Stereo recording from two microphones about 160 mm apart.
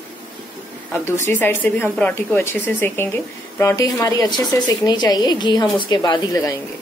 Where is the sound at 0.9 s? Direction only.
15° left (ahead or behind).